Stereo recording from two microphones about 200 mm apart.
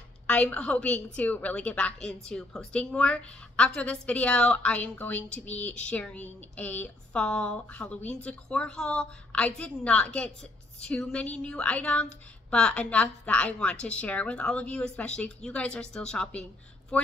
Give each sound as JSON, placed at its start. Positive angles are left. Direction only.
{"t": 0.3, "sound": "a woman's voice", "side_deg": 5}